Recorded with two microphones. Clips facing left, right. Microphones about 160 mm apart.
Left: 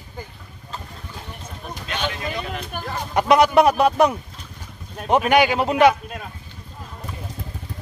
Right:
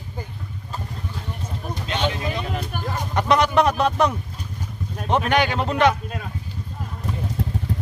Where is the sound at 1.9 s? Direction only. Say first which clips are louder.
Right 3 dB; 25° right (ahead or behind).